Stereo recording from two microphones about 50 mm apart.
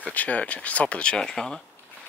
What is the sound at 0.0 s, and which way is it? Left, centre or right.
Speech, left.